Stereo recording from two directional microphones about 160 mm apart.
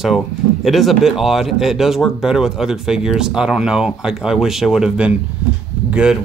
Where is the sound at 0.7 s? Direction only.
Centre (ahead or behind).